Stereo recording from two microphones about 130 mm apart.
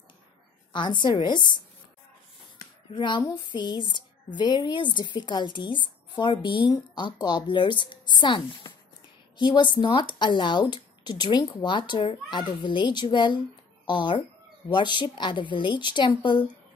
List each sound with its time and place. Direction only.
0.7 s speech: 35° left (ahead or behind)
2.9 s speech: 35° left (ahead or behind)